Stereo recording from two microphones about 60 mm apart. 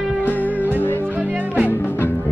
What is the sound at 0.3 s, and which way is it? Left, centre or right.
Music, left.